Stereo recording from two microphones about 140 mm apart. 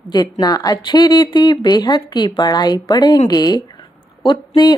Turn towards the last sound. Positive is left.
turn(degrees=30)  # may be behind; listen again after turning